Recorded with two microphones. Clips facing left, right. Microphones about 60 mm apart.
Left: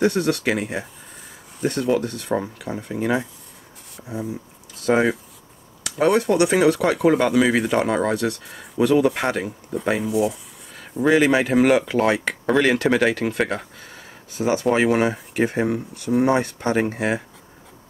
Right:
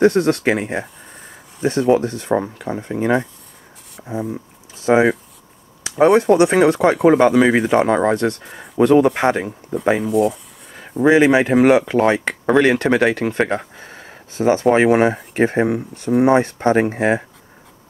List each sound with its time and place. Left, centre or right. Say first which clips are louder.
0.0 s speech: right 6 dB; centre
0.7 s a sound: right 4 dB; centre
2.0 s speech: right 5 dB; centre
3.9 s speech: right 4 dB; centre
10.8 s speech: right 4 dB; centre
13.7 s a sound: right 4 dB; right
15.3 s speech: right 3 dB; right